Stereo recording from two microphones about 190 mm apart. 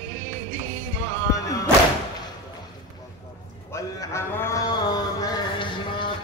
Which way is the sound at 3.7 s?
15° left (ahead or behind).